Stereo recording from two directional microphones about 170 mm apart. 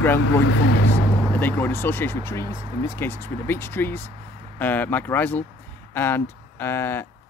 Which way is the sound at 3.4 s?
15° left (ahead or behind).